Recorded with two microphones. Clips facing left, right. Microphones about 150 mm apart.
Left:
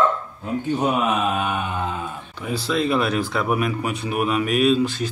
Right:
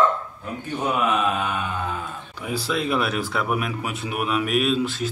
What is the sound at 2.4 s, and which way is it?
Speech, 10° right (ahead or behind).